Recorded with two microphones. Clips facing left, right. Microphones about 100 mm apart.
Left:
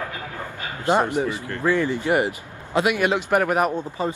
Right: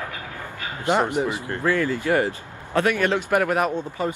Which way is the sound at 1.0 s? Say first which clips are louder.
Even; 20° right (ahead or behind).